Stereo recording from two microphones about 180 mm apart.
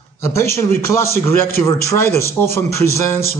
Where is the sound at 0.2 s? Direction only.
15° left (ahead or behind).